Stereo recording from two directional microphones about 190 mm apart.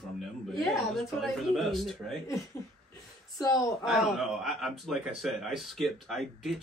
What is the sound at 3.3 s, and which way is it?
Speech, 20° left (ahead or behind).